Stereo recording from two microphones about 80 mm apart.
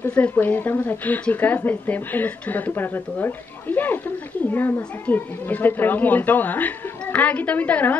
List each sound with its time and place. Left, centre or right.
0.0 s a woman's voice: centre